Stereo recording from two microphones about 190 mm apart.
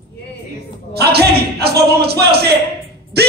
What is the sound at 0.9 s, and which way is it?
Speech, 60° right (ahead or behind).